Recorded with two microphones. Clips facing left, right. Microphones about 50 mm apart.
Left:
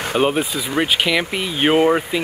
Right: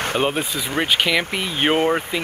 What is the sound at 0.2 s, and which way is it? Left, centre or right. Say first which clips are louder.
Speech: left 3 dB; centre.